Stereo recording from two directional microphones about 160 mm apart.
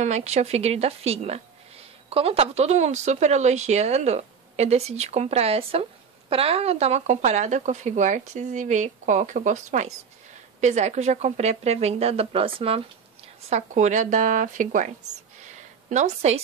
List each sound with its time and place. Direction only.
0.0 s speech: 45° right (ahead or behind)
13.5 s speech: 45° right (ahead or behind)
15.4 s a sound: 50° right (ahead or behind)